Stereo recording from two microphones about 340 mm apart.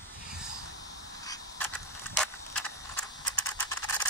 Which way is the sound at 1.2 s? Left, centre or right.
Centre.